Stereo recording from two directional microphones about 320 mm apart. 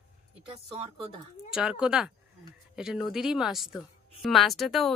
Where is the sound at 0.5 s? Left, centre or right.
Centre.